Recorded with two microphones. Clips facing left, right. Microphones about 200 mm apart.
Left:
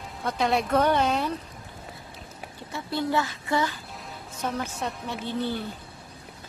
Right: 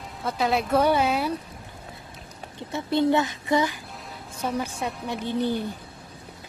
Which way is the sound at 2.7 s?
20° right (ahead or behind).